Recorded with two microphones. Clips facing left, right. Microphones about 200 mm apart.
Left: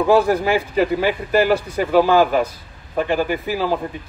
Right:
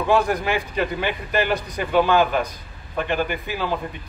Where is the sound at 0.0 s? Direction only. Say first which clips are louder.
Left 5 dB; 35° left (ahead or behind).